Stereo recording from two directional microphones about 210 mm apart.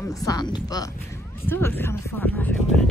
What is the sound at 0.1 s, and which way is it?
Speech, 15° left (ahead or behind).